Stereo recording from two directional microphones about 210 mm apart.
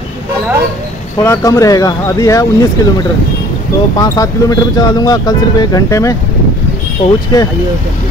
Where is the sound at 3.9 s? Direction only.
20° left (ahead or behind).